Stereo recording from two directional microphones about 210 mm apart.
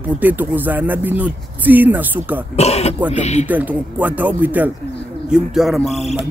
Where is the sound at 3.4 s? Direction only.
10° right (ahead or behind).